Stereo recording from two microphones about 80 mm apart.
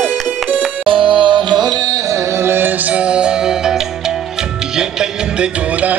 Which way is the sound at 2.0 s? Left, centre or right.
Right.